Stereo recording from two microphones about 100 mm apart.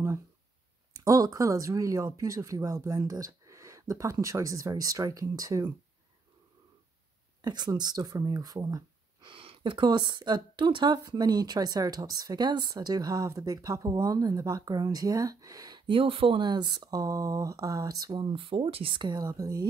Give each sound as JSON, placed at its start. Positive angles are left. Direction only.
{"t": 0.9, "sound": "speech", "side_deg": -35}
{"t": 7.4, "sound": "speech", "side_deg": -45}
{"t": 9.2, "sound": "speech", "side_deg": -65}
{"t": 15.9, "sound": "speech", "side_deg": -65}
{"t": 18.2, "sound": "speech", "side_deg": -60}